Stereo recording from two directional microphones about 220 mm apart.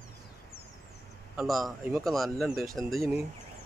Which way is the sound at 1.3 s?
Centre (ahead or behind).